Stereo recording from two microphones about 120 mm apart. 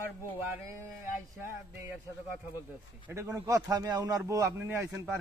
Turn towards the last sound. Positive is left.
turn(degrees=-25)  # may be behind; listen again after turning